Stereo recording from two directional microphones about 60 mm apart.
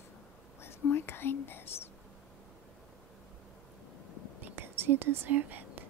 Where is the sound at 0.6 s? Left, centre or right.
Left.